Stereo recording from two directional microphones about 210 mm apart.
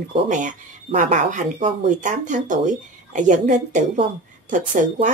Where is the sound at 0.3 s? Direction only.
35° right (ahead or behind).